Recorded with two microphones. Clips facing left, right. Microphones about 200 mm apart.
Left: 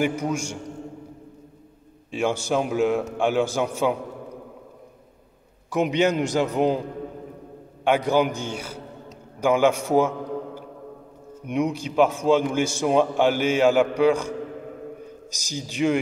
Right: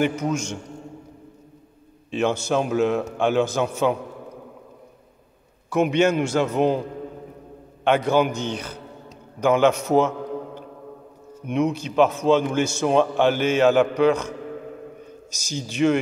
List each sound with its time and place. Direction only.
0.0 s a man's voice: 10° left (ahead or behind)
2.0 s a man's voice: 10° left (ahead or behind)
5.7 s a man's voice: 15° left (ahead or behind)
7.8 s a man's voice: 15° left (ahead or behind)
15.3 s a man's voice: 15° left (ahead or behind)